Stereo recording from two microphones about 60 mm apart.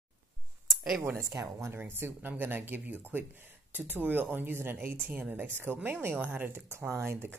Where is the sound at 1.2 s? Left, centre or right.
Right.